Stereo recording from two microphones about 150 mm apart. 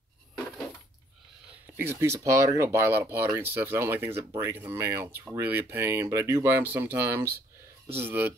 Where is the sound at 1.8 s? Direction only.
15° right (ahead or behind).